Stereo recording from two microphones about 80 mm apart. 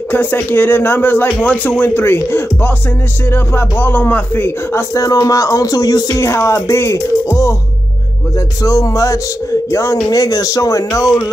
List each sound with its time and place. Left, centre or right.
0.1 s speech: left
4.9 s music: left
6.2 s music: left
8.6 s music: left
10.0 s music: left